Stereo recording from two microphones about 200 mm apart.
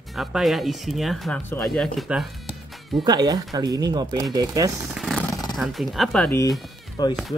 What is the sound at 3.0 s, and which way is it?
Speech, 20° right (ahead or behind).